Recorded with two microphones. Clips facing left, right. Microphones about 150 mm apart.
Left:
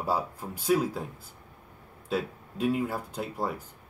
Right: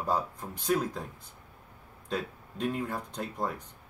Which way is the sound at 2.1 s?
5° left (ahead or behind).